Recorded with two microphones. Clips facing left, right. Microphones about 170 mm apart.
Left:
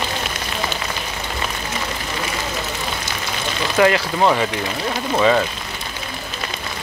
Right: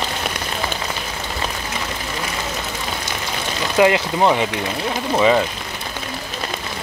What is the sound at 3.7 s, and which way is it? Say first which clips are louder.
Speech: right 1 dB; 20° right (ahead or behind).